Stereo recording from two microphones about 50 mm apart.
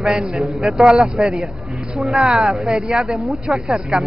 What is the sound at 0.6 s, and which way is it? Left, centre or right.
Speech, centre.